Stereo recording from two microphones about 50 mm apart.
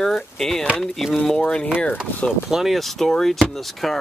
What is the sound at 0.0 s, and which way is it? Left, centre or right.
Speech, centre.